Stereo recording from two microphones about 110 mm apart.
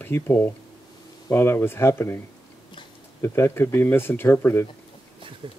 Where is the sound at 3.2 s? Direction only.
20° left (ahead or behind).